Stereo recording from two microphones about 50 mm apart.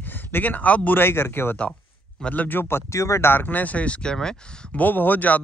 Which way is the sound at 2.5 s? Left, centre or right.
Left.